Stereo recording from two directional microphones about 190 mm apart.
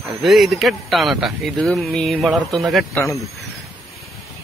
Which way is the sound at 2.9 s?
15° left (ahead or behind).